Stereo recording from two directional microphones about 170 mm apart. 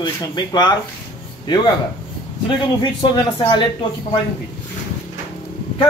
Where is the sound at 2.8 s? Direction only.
25° left (ahead or behind).